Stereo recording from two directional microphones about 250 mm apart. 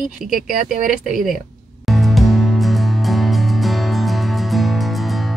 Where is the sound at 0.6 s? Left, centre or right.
Right.